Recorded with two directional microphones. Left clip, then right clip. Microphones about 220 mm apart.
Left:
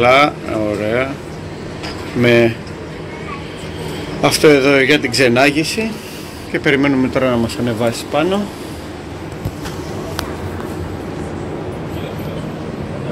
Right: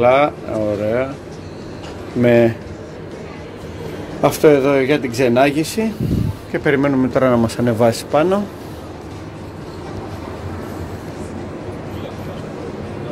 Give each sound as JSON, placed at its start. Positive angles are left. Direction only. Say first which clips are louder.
{"t": 0.0, "sound": "speech", "louder": "left 2 dB", "side_deg": -10}
{"t": 2.2, "sound": "speech", "louder": "left 1 dB", "side_deg": -15}
{"t": 4.2, "sound": "speech", "louder": "left 2 dB", "side_deg": -10}